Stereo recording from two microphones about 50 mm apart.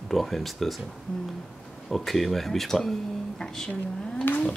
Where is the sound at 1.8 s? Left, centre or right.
Centre.